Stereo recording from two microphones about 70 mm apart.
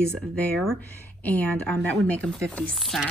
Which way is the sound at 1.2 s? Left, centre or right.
Left.